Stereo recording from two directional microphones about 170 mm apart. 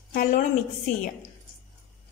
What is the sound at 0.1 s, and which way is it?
Speech, 50° left (ahead or behind).